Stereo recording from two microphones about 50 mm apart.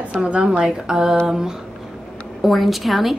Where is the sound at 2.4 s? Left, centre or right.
Centre.